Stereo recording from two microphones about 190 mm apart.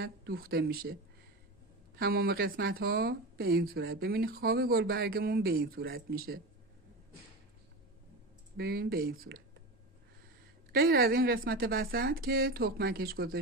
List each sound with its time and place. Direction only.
0.0 s speech: 50° right (ahead or behind)
2.0 s speech: 55° right (ahead or behind)
8.5 s speech: 55° right (ahead or behind)
10.7 s speech: 50° right (ahead or behind)